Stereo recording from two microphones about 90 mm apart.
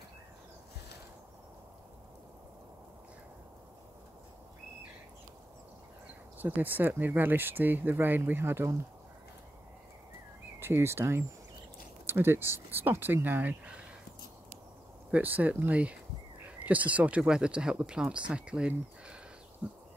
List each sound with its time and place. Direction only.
6.3 s speech: 20° right (ahead or behind)
10.6 s speech: 30° right (ahead or behind)
15.0 s speech: 20° right (ahead or behind)